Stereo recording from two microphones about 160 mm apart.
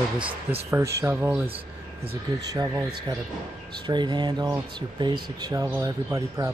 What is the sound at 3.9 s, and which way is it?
Speech, 30° right (ahead or behind).